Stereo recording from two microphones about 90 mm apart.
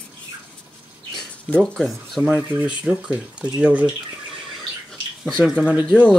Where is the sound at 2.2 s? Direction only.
10° right (ahead or behind).